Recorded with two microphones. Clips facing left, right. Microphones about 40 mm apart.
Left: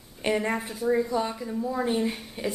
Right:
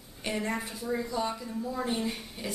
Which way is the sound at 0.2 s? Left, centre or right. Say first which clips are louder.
Left 6 dB; centre.